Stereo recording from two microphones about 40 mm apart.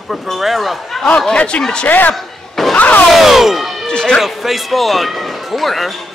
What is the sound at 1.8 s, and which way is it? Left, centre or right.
Speech, left.